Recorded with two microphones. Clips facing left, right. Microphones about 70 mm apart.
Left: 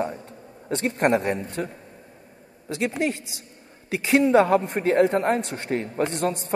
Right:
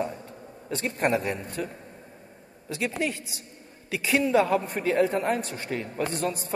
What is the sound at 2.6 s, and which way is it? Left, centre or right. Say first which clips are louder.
A man's voice: left 4 dB; left.